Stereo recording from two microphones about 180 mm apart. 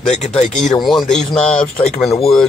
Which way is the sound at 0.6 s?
Centre (ahead or behind).